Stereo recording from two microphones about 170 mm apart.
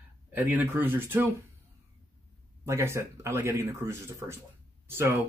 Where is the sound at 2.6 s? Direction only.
15° right (ahead or behind).